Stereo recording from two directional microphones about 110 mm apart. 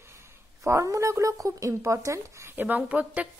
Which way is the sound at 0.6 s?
30° right (ahead or behind).